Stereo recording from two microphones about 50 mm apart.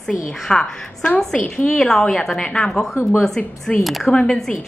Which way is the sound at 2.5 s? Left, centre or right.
Centre.